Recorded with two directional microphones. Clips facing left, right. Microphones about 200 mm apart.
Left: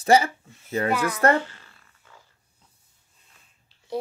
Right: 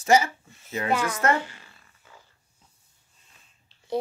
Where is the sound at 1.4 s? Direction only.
10° right (ahead or behind).